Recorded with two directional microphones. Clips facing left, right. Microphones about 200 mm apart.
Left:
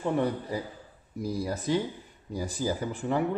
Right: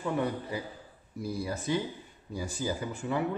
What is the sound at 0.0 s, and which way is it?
A woman's voice, 35° left (ahead or behind).